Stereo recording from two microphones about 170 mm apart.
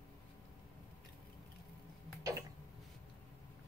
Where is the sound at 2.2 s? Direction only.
20° right (ahead or behind).